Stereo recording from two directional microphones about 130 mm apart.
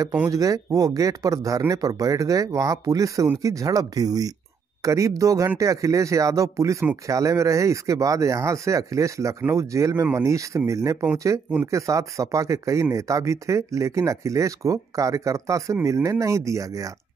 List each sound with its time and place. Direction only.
0.3 s speech: 25° right (ahead or behind)